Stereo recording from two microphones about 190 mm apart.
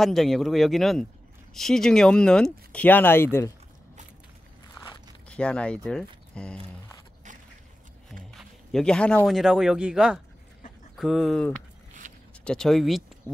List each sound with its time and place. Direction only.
0.0 s speech: centre (ahead or behind)
5.3 s speech: 5° left (ahead or behind)
8.1 s speech: 5° left (ahead or behind)
12.0 s zipper: 40° right (ahead or behind)
12.4 s speech: centre (ahead or behind)